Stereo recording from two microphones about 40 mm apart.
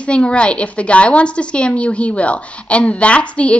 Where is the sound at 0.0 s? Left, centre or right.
Left.